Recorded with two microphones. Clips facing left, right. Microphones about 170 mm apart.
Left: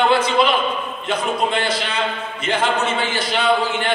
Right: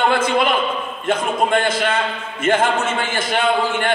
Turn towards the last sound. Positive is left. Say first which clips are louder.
# even
turn(degrees=-50)  # may be behind; listen again after turning